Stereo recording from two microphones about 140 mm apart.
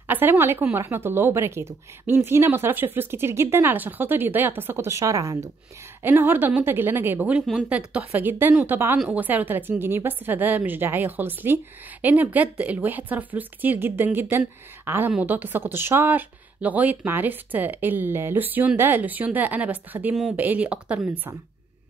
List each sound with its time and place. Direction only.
0.1 s a woman's voice: 15° right (ahead or behind)